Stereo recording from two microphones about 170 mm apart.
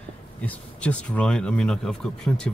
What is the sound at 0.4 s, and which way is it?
Speech, 10° left (ahead or behind).